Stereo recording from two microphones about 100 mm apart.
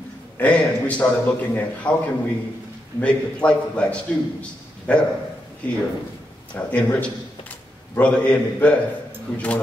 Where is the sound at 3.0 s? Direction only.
10° left (ahead or behind).